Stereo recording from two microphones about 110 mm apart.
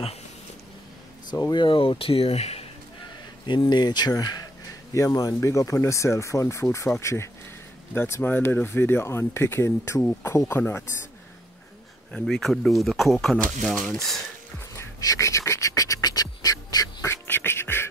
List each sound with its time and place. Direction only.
1.3 s speech: 40° left (ahead or behind); by 2.6 s 70° left (ahead or behind)
3.4 s speech: 45° left (ahead or behind); by 10.6 s 25° left (ahead or behind)
12.1 s speech: 5° left (ahead or behind)
14.7 s music: 30° left (ahead or behind)